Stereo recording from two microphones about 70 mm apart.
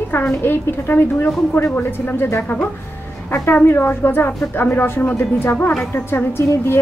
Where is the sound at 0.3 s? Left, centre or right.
Left.